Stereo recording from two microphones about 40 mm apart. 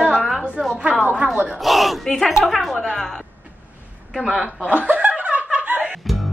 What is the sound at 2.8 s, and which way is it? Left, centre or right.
Speech, centre.